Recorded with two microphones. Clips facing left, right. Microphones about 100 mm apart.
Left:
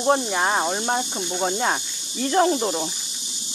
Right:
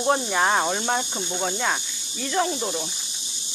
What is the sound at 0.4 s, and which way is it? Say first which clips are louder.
Speech: right 1 dB; 10° left (ahead or behind).